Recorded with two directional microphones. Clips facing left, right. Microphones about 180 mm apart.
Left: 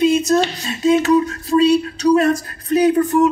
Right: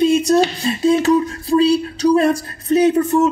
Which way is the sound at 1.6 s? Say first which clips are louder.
Left 1 dB; 30° right (ahead or behind).